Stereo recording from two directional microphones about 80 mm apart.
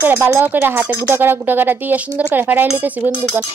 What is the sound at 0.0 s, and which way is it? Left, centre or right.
Speech, right.